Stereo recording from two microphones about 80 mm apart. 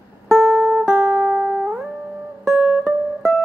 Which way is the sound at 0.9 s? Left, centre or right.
Right.